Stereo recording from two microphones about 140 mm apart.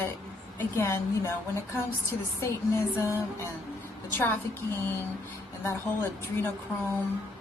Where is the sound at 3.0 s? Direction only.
20° left (ahead or behind).